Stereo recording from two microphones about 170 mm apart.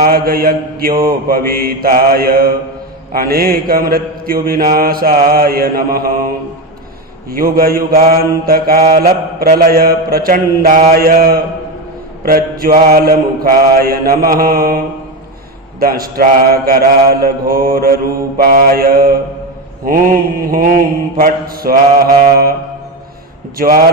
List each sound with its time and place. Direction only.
0.0 s mantra: 60° right (ahead or behind)
15.8 s mantra: 60° right (ahead or behind)
23.6 s mantra: 60° right (ahead or behind)